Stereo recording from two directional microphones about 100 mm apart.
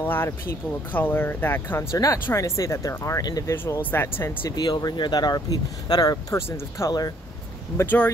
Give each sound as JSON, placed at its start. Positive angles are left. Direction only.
{"t": 0.0, "sound": "speech", "side_deg": 20}
{"t": 3.5, "sound": "speech", "side_deg": 20}
{"t": 4.5, "sound": "speech", "side_deg": 45}
{"t": 6.3, "sound": "speech", "side_deg": 30}